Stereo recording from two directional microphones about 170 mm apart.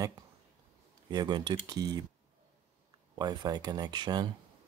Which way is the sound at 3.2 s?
25° right (ahead or behind).